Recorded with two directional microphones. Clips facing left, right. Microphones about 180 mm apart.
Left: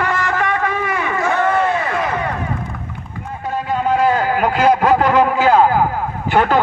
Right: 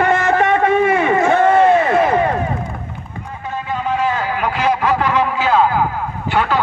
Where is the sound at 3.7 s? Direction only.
45° left (ahead or behind).